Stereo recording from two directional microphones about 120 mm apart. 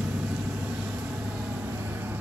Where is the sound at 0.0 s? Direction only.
5° right (ahead or behind).